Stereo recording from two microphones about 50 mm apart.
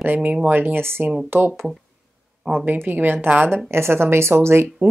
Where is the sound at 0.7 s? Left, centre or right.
Right.